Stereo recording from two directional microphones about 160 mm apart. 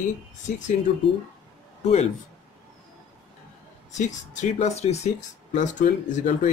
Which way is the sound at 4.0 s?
50° left (ahead or behind).